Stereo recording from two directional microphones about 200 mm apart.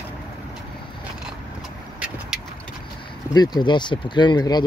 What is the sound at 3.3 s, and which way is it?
Speech, 20° left (ahead or behind).